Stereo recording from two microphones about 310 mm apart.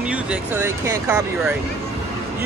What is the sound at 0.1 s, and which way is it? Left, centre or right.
Speech, centre.